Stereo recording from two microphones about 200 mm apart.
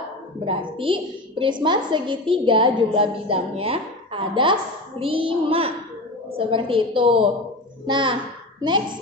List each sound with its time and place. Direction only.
0.5 s a woman's voice: 25° right (ahead or behind)